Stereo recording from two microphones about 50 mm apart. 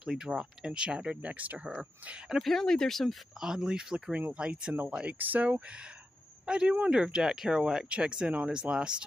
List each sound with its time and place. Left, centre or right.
0.0 s speech: centre; by 1.7 s right
2.4 s speech: centre
3.3 s speech: centre
5.0 s speech: right
6.4 s speech: centre